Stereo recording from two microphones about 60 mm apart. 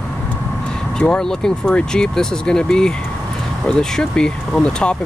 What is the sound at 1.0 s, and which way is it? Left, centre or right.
Speech, centre.